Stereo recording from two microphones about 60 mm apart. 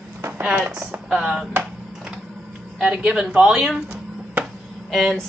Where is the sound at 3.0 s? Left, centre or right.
Centre.